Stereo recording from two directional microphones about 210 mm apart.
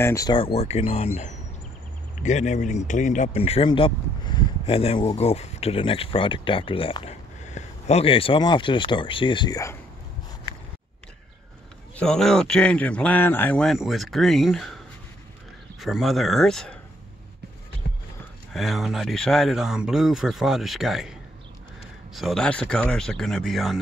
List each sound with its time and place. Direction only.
0.0 s speech: 15° left (ahead or behind)
11.9 s a man's voice: 5° left (ahead or behind)
15.8 s a man's voice: centre (ahead or behind)
17.8 s music: 50° left (ahead or behind)
18.5 s a man's voice: centre (ahead or behind)